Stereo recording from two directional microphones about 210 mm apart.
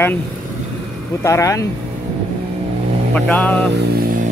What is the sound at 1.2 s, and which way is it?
Speech, 15° left (ahead or behind).